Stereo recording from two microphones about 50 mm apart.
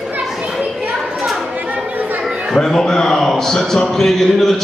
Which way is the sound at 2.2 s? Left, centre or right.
Centre.